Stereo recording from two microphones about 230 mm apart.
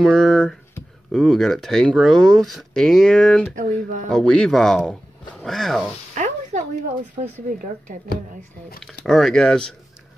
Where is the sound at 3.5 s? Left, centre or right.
Right.